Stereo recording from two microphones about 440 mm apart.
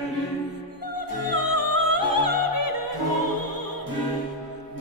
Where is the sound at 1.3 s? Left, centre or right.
Left.